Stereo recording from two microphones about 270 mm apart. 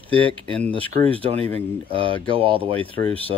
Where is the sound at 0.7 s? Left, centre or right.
Centre.